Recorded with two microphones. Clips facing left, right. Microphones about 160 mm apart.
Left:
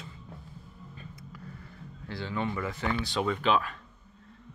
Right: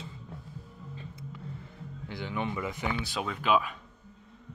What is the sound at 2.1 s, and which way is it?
Speech, 15° right (ahead or behind).